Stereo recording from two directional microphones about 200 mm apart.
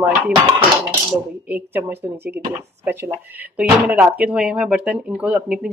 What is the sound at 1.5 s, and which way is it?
Speech, 10° right (ahead or behind).